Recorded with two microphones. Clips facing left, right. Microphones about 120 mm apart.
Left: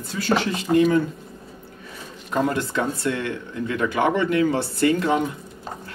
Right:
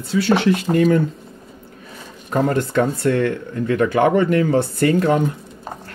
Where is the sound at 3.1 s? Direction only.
50° right (ahead or behind).